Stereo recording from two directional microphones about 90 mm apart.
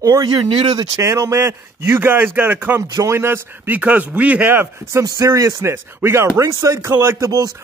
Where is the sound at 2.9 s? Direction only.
35° right (ahead or behind).